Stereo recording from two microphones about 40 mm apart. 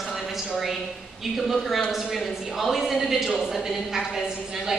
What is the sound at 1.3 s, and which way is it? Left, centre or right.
A woman's voice, centre.